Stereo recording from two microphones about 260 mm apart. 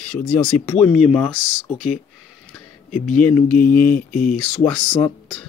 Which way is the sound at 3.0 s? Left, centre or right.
Left.